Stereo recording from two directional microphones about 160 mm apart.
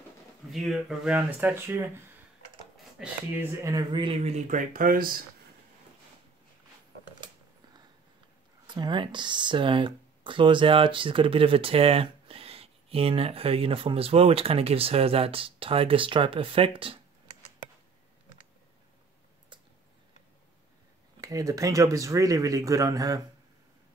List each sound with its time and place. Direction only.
0.5 s speech: centre (ahead or behind)
3.0 s speech: 5° right (ahead or behind)
3.6 s speech: 25° right (ahead or behind); by 5.2 s 65° right (ahead or behind)
8.6 s speech: 30° right (ahead or behind)
21.2 s speech: 20° right (ahead or behind)